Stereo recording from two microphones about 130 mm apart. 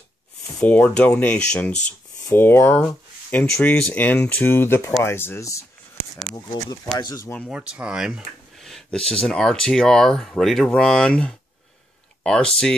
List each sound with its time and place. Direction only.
0.6 s speech: 10° left (ahead or behind)
7.0 s speech: 30° left (ahead or behind)
7.4 s speech: 5° right (ahead or behind)